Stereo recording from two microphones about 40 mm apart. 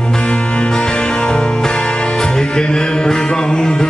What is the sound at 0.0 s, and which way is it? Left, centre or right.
Music, left.